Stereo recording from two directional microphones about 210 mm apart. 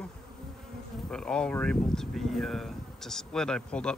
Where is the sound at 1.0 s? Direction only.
5° left (ahead or behind).